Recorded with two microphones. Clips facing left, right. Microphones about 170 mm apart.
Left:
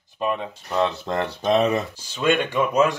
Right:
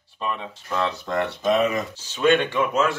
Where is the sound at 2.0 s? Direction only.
10° left (ahead or behind).